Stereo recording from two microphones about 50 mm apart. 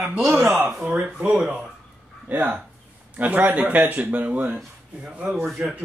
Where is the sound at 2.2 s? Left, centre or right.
Right.